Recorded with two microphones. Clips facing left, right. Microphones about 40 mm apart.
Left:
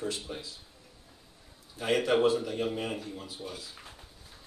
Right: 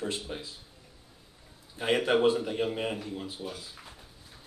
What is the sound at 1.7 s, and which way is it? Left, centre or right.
Speech, right.